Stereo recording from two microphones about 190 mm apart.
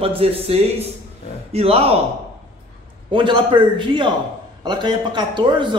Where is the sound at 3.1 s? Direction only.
25° right (ahead or behind).